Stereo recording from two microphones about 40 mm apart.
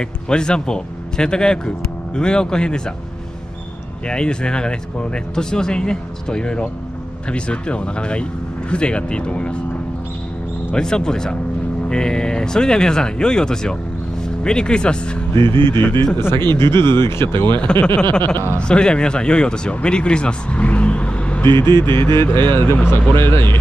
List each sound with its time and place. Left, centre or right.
0.0 s speech: centre
4.1 s speech: left
10.7 s speech: centre
15.3 s speech: left
16.2 s speech: left
17.8 s speech: left
20.5 s vehicle: left
21.4 s speech: left